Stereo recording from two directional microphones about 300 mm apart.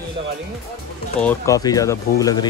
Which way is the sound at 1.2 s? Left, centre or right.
Centre.